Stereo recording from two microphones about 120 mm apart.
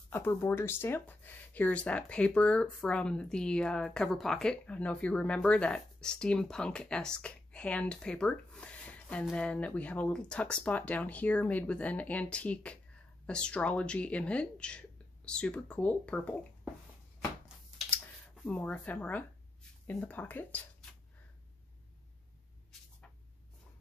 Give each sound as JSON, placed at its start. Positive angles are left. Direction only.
{"t": 0.1, "sound": "speech", "side_deg": 20}
{"t": 18.4, "sound": "speech", "side_deg": 10}